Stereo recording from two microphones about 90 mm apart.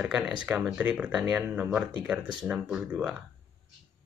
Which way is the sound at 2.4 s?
Centre (ahead or behind).